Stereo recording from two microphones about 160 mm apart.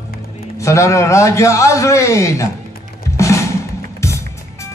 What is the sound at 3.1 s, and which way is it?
Music, 20° left (ahead or behind).